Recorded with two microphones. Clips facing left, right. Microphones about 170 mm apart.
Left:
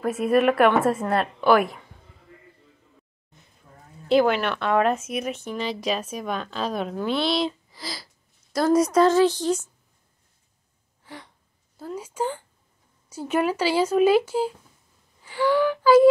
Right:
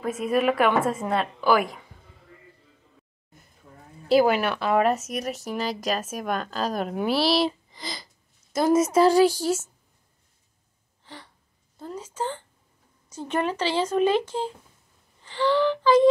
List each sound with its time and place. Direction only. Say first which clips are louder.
0.0 s speech: left 3 dB; centre (ahead or behind)
4.1 s a woman's voice: even; 5° right (ahead or behind)
11.1 s a sound: left 3 dB; 10° left (ahead or behind)
11.7 s speech: left 2 dB; 5° left (ahead or behind)